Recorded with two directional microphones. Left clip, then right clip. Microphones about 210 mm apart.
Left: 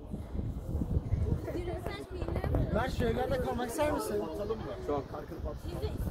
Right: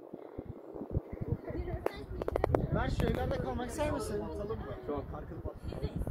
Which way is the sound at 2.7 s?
30° right (ahead or behind).